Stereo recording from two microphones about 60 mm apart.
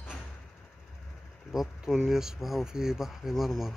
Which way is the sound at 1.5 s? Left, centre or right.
Centre.